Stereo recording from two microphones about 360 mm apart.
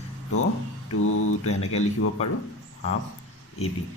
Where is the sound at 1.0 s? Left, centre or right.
Left.